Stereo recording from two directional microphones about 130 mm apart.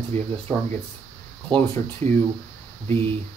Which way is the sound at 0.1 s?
50° right (ahead or behind).